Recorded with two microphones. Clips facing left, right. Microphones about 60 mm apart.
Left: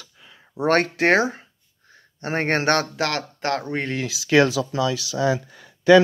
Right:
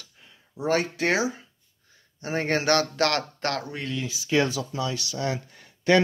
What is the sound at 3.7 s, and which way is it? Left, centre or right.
Speech, left.